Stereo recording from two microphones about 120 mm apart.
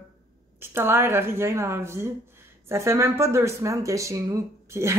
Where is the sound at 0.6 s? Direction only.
20° right (ahead or behind).